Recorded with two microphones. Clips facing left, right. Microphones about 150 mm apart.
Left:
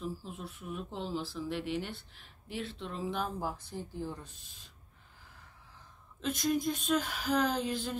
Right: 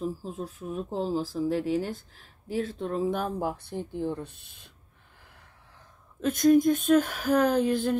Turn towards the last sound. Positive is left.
turn(degrees=-55)  # may be behind; listen again after turning